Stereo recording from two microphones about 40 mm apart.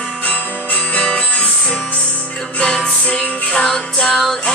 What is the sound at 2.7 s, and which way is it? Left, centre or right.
Music, left.